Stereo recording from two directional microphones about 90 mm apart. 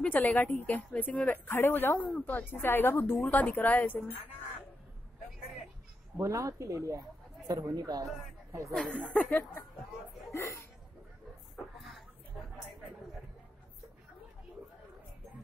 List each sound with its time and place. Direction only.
0.0 s speech: 15° left (ahead or behind)
1.5 s speech: 25° left (ahead or behind)
6.1 s speech: 35° right (ahead or behind)
8.7 s speech: 10° left (ahead or behind)
10.3 s speech: 30° left (ahead or behind)